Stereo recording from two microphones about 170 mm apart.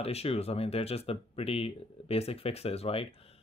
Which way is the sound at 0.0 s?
35° left (ahead or behind).